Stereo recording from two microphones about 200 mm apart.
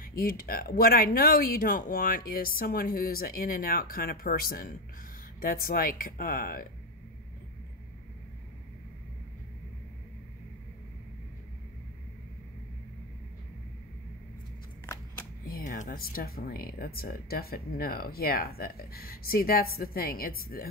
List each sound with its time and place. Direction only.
0.0 s speech: 45° left (ahead or behind)
15.4 s speech: 45° left (ahead or behind)